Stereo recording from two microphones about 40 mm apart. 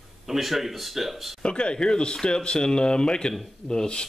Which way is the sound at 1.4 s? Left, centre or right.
Left.